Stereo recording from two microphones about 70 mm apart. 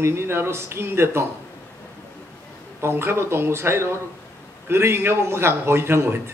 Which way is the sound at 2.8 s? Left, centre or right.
Right.